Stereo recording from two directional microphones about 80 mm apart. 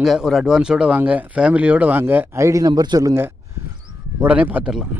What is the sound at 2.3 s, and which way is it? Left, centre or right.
Speech, right.